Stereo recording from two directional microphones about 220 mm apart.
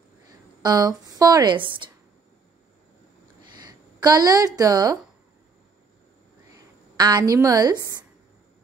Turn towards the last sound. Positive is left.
turn(degrees=-15)  # may be behind; listen again after turning